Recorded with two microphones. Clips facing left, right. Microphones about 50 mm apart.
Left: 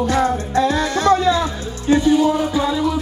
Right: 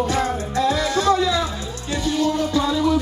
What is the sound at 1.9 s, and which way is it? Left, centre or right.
Music, left.